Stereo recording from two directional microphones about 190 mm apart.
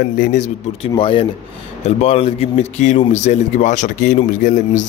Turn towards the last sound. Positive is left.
turn(degrees=40)  # may be behind; listen again after turning